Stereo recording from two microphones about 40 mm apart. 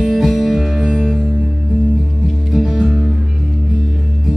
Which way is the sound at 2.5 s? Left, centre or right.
Centre.